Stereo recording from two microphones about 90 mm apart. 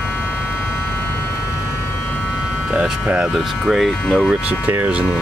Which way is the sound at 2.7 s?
15° right (ahead or behind).